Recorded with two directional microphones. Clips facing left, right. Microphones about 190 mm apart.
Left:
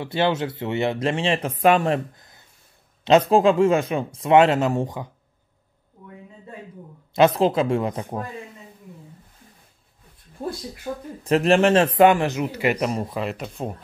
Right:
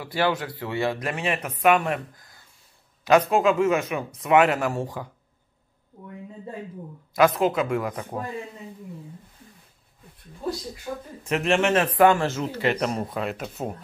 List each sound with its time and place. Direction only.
0.0 s speech: 25° left (ahead or behind)
7.2 s speech: 30° left (ahead or behind)
10.4 s speech: 50° left (ahead or behind)
11.2 s speech: 35° left (ahead or behind)
12.0 s speech: 15° left (ahead or behind); by 13.7 s centre (ahead or behind)